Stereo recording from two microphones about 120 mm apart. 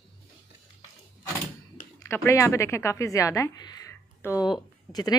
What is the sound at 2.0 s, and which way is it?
Speech, 20° left (ahead or behind).